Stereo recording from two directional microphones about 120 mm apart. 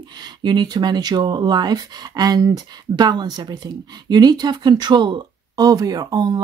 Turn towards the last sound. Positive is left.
turn(degrees=-35)  # may be behind; listen again after turning